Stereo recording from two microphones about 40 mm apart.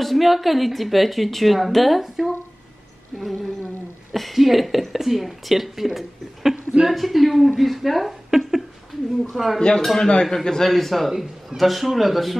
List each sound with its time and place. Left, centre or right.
0.0 s a woman's voice: centre
9.6 s a man's voice: left
10.7 s a woman's voice: centre